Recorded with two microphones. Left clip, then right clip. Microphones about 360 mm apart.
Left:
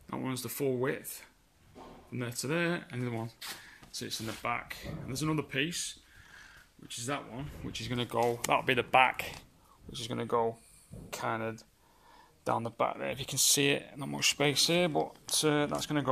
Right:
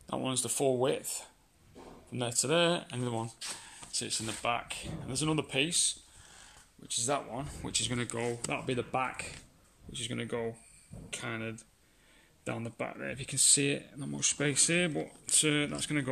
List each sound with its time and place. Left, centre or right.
0.0 s speech: centre
7.9 s speech: centre